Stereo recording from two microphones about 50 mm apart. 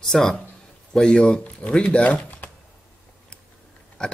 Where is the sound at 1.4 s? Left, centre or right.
Left.